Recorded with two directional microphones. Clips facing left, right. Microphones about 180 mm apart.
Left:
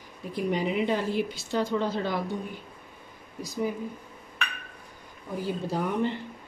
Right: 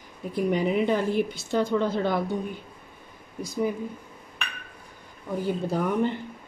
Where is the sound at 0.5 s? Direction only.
50° right (ahead or behind).